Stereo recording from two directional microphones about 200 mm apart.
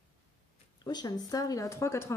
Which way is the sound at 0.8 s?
20° left (ahead or behind).